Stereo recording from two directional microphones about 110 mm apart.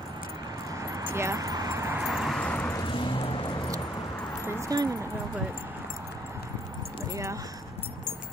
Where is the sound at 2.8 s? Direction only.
50° left (ahead or behind).